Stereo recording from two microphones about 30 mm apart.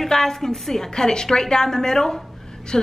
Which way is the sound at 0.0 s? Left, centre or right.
Centre.